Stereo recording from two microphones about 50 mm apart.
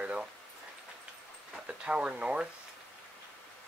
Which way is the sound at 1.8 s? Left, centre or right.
Right.